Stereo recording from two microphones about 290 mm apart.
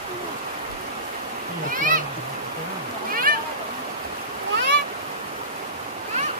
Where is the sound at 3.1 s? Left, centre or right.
Right.